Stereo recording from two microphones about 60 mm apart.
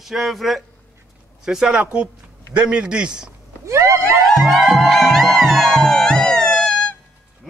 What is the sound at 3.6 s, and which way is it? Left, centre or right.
Speech, right.